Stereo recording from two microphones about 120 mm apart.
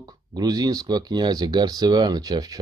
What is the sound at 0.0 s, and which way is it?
Speech, 30° right (ahead or behind).